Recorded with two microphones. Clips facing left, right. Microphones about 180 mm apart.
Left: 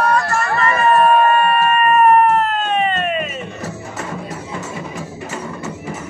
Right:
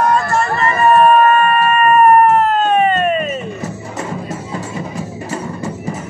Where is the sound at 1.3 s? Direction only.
45° right (ahead or behind).